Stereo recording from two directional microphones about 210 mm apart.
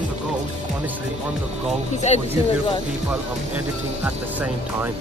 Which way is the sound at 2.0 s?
30° left (ahead or behind).